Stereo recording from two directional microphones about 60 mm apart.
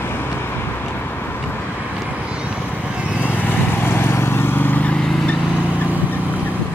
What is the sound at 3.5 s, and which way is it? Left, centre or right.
Vehicle, left.